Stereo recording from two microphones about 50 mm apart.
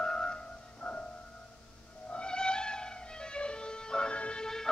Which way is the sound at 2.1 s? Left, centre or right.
Centre.